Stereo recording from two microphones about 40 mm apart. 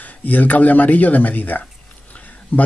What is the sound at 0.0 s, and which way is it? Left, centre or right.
Speech, left.